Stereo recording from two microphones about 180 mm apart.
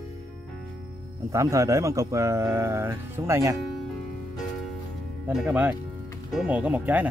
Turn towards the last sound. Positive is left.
turn(degrees=-10)  # may be behind; listen again after turning